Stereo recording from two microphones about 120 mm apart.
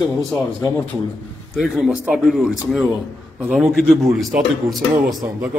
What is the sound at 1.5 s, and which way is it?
A man's voice, centre (ahead or behind).